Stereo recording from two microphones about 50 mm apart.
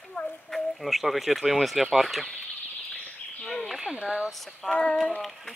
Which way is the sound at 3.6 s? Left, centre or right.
Centre.